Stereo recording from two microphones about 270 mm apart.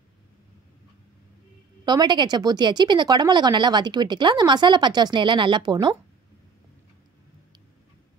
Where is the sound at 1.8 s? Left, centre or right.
Centre.